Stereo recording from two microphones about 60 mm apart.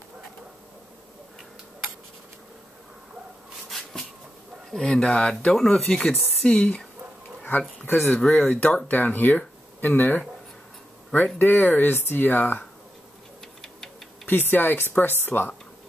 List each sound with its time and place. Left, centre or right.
3.6 s a sound: centre
4.6 s speech: centre
7.8 s speech: left
8.2 s speech: centre
8.5 s speech: left
11.3 s speech: left
14.2 s speech: left